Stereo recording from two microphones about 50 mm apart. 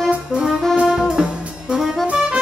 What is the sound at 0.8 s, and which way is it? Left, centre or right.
Music, centre.